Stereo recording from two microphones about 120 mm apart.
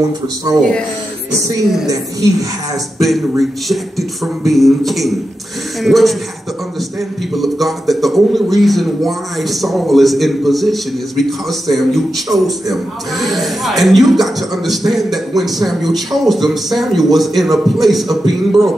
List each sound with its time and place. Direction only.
0.5 s speech: 25° right (ahead or behind)
3.0 s a man's voice: centre (ahead or behind)
7.3 s a man's voice: centre (ahead or behind)